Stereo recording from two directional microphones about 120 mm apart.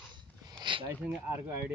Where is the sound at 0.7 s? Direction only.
40° right (ahead or behind).